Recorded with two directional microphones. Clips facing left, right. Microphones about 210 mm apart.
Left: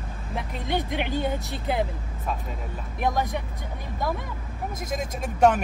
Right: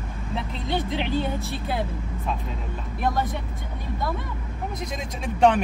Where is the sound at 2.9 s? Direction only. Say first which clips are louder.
Even; 15° left (ahead or behind).